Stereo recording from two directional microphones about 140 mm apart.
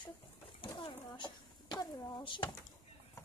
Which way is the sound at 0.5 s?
35° left (ahead or behind).